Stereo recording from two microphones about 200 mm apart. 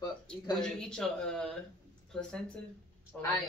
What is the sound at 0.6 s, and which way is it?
Speech, 5° left (ahead or behind).